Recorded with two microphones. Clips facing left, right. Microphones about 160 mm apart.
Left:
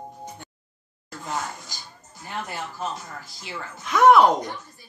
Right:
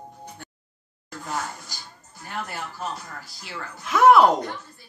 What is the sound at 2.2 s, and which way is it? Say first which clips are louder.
Speech: left 1 dB; 20° left (ahead or behind).